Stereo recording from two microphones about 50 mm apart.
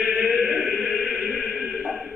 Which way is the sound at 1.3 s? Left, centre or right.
Centre.